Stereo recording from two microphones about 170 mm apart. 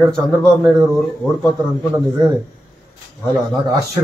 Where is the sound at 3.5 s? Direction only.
20° right (ahead or behind).